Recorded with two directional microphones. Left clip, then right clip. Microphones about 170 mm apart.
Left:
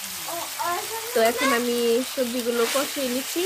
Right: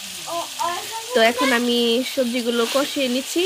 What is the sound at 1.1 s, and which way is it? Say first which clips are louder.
Frying: right 4 dB; 35° right (ahead or behind).